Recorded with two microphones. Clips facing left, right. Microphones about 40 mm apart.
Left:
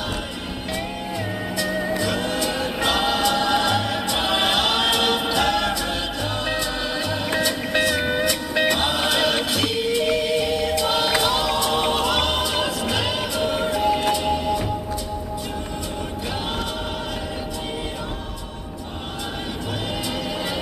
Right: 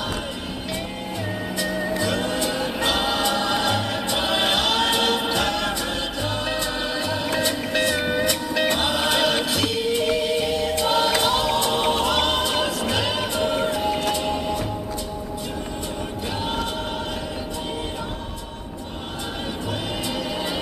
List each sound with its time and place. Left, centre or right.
1.7 s music: centre
2.6 s choir: centre
3.7 s music: centre
4.6 s choir: centre
5.5 s music: centre
8.5 s music: left
10.9 s choir: centre
11.4 s a capella: centre
11.7 s music: centre
13.8 s music: centre